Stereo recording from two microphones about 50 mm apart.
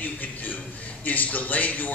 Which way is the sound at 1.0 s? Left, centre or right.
Left.